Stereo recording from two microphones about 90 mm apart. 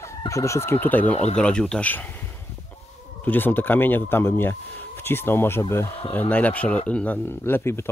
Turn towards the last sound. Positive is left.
turn(degrees=30)  # may be behind; listen again after turning